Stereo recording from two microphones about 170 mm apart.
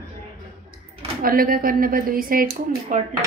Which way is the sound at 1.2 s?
60° right (ahead or behind).